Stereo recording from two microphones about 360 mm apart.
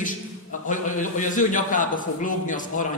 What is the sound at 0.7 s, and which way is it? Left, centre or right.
A man's voice, left.